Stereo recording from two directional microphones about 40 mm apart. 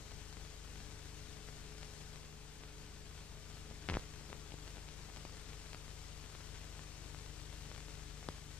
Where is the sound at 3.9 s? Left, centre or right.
Left.